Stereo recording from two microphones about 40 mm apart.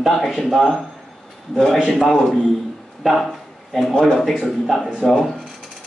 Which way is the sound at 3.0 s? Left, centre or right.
Centre.